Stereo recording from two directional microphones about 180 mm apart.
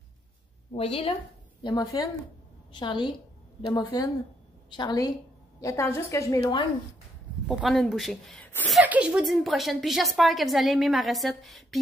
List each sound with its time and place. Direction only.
0.7 s a woman's voice: 30° left (ahead or behind); by 6.6 s 15° left (ahead or behind)
7.4 s a woman's voice: centre (ahead or behind)